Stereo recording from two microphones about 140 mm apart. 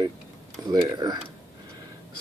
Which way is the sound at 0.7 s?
30° right (ahead or behind).